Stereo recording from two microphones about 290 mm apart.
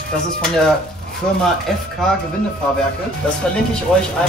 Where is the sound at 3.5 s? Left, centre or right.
Centre.